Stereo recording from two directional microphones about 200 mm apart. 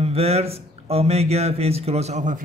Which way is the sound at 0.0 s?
30° right (ahead or behind).